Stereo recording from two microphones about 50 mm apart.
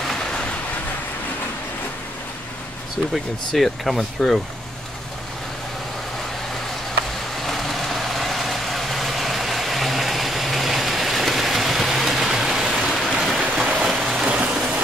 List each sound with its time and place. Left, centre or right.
0.1 s vehicle: centre
3.1 s speech: centre
7.4 s vehicle: centre
13.2 s a sound: centre
14.2 s vehicle: right